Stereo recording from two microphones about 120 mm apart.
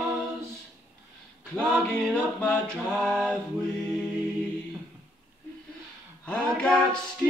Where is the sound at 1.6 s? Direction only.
10° left (ahead or behind).